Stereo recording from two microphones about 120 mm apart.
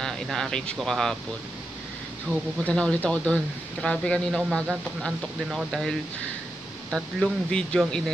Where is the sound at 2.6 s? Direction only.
10° left (ahead or behind).